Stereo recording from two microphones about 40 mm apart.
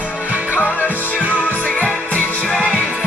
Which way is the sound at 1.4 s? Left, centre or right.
Left.